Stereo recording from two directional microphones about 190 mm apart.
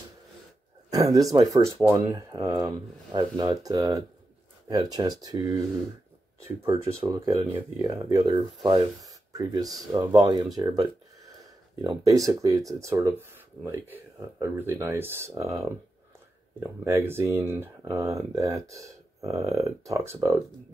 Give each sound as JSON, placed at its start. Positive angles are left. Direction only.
{"t": 0.8, "sound": "speech", "side_deg": -20}
{"t": 6.6, "sound": "speech", "side_deg": -20}